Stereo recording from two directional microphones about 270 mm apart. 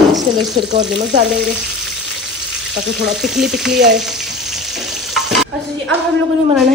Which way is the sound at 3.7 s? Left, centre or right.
Right.